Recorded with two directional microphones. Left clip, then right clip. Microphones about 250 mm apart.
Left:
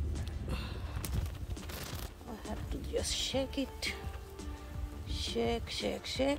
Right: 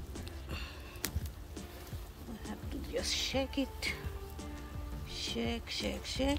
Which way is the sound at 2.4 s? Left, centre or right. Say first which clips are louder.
Even; centre.